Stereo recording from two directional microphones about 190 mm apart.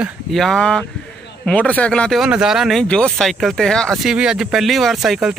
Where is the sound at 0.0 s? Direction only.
Centre (ahead or behind).